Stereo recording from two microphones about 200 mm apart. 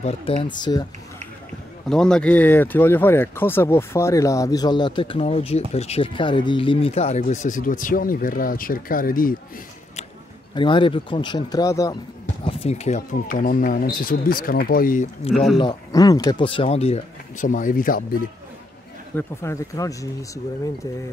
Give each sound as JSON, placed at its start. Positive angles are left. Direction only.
{"t": 0.0, "sound": "speech", "side_deg": 30}
{"t": 1.9, "sound": "speech", "side_deg": 5}
{"t": 10.5, "sound": "speech", "side_deg": 25}
{"t": 12.4, "sound": "speech", "side_deg": 30}
{"t": 15.5, "sound": "speech", "side_deg": 20}
{"t": 19.1, "sound": "speech", "side_deg": 15}